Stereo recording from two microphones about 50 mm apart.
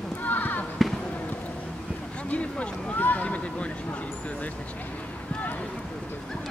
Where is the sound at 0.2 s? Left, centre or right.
Left.